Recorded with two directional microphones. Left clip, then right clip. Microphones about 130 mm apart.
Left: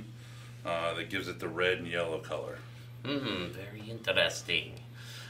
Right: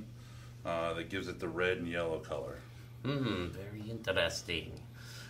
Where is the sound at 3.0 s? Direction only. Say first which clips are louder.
Left 2 dB; 5° right (ahead or behind).